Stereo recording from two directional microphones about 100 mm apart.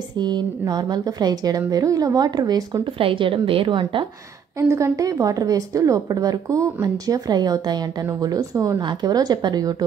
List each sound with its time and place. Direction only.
0.2 s a woman's voice: 45° right (ahead or behind)
3.0 s a woman's voice: 60° right (ahead or behind)
4.6 s a woman's voice: 30° right (ahead or behind)